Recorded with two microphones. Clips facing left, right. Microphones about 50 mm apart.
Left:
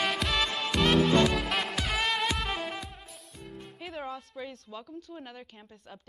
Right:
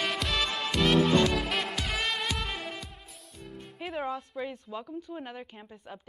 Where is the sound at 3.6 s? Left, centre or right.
Centre.